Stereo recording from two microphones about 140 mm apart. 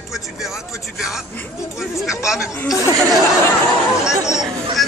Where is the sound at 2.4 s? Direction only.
20° left (ahead or behind).